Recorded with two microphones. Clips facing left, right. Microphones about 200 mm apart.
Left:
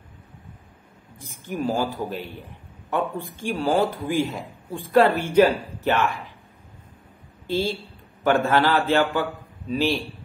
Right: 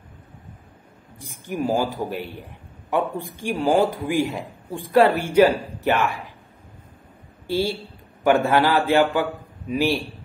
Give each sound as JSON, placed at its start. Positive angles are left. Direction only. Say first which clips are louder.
{"t": 1.2, "sound": "a man's voice", "louder": "right 1 dB", "side_deg": -15}
{"t": 7.4, "sound": "a man's voice", "louder": "right 1 dB", "side_deg": -15}